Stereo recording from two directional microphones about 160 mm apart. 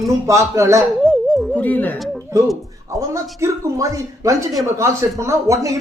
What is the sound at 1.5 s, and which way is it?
Speech, 10° left (ahead or behind).